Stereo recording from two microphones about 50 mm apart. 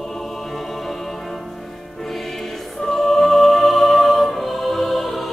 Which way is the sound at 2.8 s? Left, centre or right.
Centre.